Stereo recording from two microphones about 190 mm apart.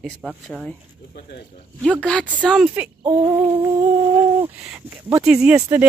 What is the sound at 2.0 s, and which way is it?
A woman's voice, 5° left (ahead or behind).